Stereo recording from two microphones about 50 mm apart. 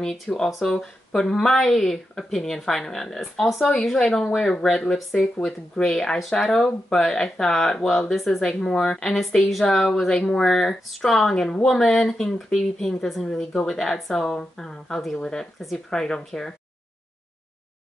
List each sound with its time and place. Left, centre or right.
0.3 s speech: centre